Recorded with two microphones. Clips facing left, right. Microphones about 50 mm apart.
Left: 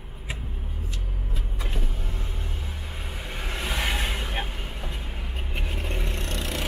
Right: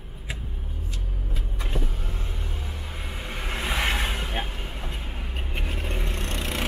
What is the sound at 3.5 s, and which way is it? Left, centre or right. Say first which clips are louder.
Vehicle: right 2 dB; right.